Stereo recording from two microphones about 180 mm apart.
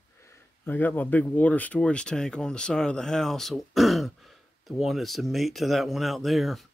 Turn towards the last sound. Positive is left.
turn(degrees=0)  # may be behind; listen again after turning